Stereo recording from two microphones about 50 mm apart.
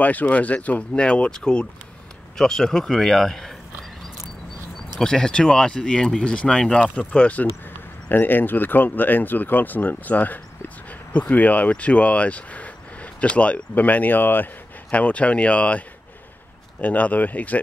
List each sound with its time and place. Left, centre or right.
0.0 s speech: left; by 3.5 s centre
5.0 s speech: centre
8.1 s speech: left
14.9 s speech: left
16.8 s speech: left